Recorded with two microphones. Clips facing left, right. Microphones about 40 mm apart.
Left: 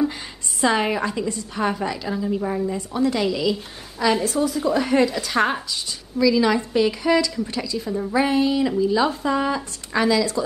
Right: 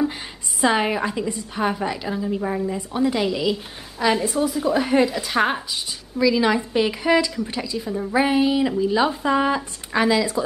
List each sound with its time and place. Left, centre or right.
0.6 s a woman's voice: centre